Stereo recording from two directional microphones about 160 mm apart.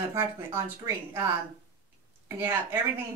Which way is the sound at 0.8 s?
20° right (ahead or behind).